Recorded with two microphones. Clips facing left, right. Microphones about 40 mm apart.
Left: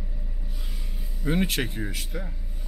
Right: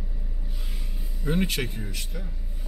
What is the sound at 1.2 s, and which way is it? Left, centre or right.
Speech, centre.